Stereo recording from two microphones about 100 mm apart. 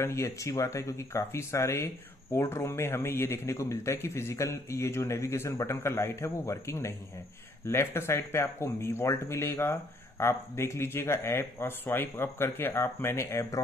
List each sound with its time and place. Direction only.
0.0 s speech: 30° left (ahead or behind)